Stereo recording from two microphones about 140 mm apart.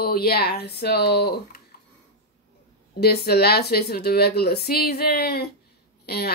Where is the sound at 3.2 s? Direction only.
90° left.